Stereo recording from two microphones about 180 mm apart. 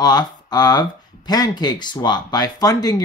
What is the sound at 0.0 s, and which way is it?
Speech, 20° left (ahead or behind).